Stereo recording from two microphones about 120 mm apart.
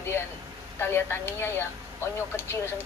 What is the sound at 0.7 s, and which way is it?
Speech, 20° left (ahead or behind).